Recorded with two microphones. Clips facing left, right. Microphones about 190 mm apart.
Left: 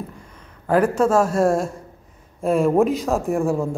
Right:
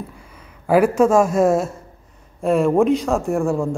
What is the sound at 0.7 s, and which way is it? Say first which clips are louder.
A man's voice: right 3 dB; 10° right (ahead or behind).